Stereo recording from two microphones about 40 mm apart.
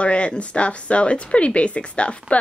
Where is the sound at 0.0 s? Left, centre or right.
Left.